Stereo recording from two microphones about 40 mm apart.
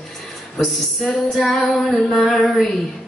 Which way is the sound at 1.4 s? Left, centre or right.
Centre.